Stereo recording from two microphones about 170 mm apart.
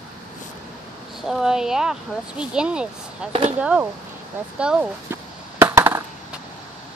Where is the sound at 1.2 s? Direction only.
5° right (ahead or behind).